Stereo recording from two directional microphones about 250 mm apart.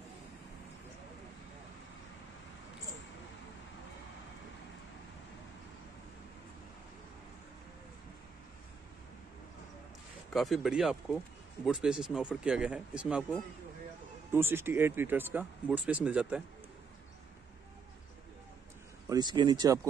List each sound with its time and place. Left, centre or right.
10.3 s speech: centre
19.0 s speech: centre